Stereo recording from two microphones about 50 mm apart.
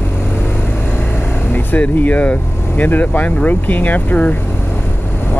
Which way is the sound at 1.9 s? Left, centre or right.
Left.